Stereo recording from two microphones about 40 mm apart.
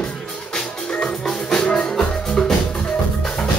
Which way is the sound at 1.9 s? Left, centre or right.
Centre.